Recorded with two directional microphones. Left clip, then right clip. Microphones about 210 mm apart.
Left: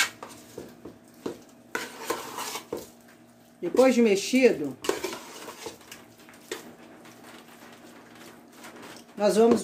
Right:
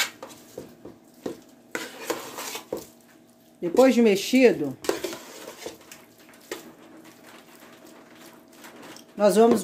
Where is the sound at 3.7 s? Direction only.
35° right (ahead or behind).